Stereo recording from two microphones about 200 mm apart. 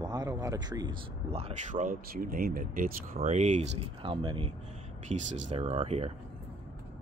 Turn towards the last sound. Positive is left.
turn(degrees=-30)  # may be behind; listen again after turning